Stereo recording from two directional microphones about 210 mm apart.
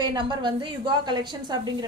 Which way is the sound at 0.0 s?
20° right (ahead or behind).